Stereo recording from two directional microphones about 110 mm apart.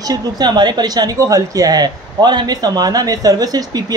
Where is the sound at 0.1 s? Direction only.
40° right (ahead or behind).